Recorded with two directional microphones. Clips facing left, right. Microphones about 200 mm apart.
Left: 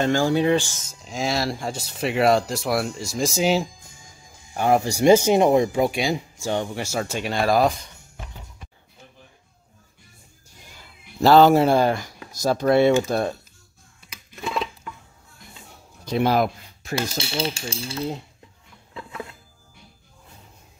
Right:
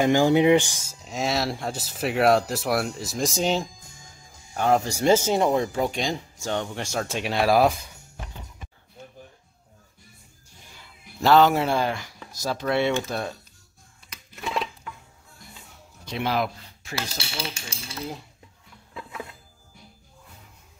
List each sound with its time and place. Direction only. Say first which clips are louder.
0.0 s speech: right 2 dB; 15° right (ahead or behind)
1.0 s speech: left 1 dB; centre (ahead or behind)
11.1 s speech: left 4 dB; 35° left (ahead or behind)
16.1 s speech: left 6 dB; 45° left (ahead or behind)
17.4 s a sound: left 9 dB; 25° left (ahead or behind)